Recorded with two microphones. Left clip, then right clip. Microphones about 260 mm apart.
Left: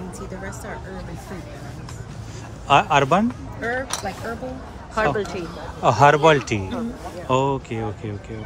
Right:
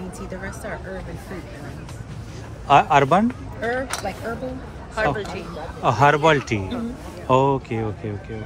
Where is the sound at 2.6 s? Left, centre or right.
Centre.